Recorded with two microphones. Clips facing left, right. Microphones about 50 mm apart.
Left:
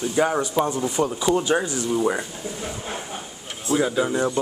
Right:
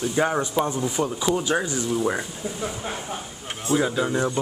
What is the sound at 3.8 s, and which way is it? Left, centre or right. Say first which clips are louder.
Speech: left 2 dB; centre.